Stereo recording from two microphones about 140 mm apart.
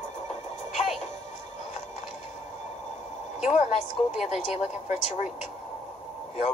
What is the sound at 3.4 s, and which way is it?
A woman's voice, 55° left (ahead or behind).